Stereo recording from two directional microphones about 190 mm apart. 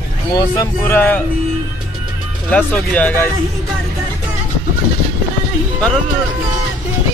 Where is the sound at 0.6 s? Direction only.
10° left (ahead or behind).